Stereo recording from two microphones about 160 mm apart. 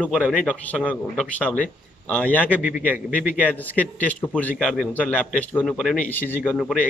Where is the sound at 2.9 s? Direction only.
60° left (ahead or behind).